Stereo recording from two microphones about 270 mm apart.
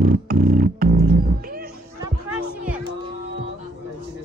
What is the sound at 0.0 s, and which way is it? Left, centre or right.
Speech, right.